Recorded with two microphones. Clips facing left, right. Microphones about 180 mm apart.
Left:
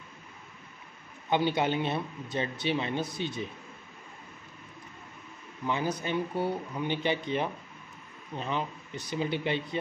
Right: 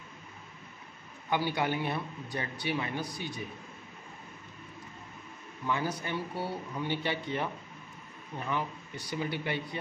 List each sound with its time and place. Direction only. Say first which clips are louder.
1.3 s a man's voice: left 3 dB; 20° left (ahead or behind)
5.7 s a man's voice: left 2 dB; 20° left (ahead or behind)